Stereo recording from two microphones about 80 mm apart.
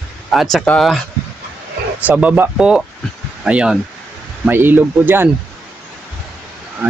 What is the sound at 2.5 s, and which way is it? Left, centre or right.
Speech, centre.